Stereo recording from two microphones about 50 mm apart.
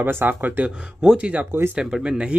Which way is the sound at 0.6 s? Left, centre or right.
Centre.